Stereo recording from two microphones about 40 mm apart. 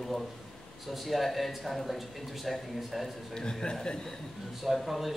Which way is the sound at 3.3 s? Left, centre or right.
Centre.